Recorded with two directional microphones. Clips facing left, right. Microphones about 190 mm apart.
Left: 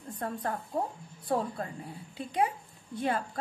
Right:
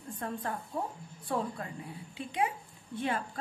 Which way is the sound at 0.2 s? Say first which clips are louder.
Left 3 dB; 40° left (ahead or behind).